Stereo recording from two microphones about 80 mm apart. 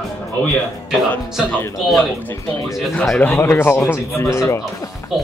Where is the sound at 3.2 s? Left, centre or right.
Left.